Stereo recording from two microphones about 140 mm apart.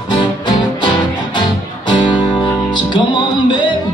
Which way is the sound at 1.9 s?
35° left (ahead or behind).